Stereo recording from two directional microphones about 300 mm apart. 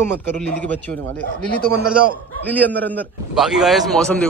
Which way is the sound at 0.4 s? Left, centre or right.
Centre.